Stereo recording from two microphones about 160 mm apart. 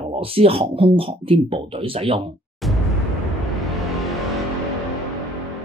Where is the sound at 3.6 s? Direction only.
Centre (ahead or behind).